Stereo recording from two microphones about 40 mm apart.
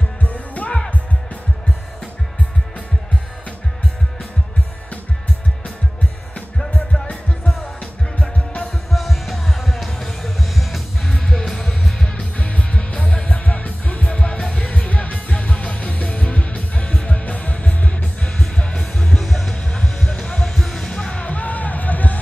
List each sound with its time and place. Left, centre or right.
0.2 s music: left
7.8 s music: left
8.9 s music: centre
9.8 s music: centre
10.4 s music: centre
11.1 s music: centre
12.4 s music: left
19.1 s music: centre
19.5 s music: left
20.5 s music: centre; by 22.2 s left